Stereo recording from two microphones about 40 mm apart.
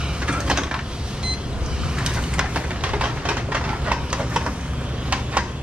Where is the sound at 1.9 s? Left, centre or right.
Right.